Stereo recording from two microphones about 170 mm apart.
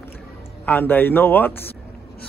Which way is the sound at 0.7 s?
10° left (ahead or behind).